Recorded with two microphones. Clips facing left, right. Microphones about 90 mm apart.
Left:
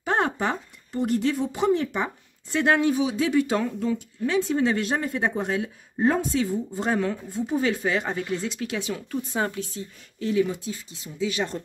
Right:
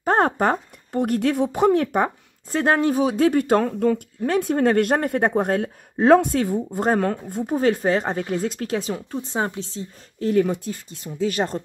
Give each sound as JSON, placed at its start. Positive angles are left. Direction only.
{"t": 0.0, "sound": "speech", "side_deg": -45}
{"t": 2.0, "sound": "speech", "side_deg": -40}
{"t": 5.9, "sound": "speech", "side_deg": -90}
{"t": 6.3, "sound": "speech", "side_deg": -55}
{"t": 10.2, "sound": "speech", "side_deg": -50}